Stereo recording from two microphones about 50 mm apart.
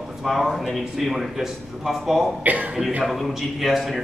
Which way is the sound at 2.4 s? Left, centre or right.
Right.